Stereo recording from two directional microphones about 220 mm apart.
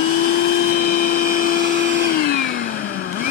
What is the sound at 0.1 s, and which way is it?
Vacuum cleaner, 45° left (ahead or behind).